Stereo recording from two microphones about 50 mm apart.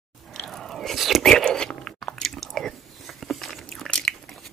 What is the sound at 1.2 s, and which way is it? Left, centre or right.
Whispering, centre.